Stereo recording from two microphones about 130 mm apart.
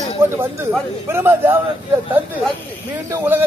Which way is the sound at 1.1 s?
15° right (ahead or behind).